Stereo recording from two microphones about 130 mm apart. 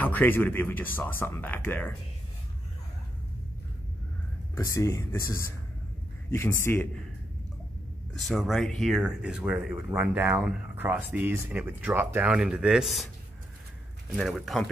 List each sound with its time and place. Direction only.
0.0 s speech: 15° left (ahead or behind)
4.6 s speech: 20° left (ahead or behind)
8.2 s speech: centre (ahead or behind)
14.1 s speech: centre (ahead or behind)